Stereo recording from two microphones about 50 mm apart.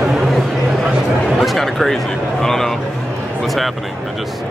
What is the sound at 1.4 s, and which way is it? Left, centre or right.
Chatter, centre.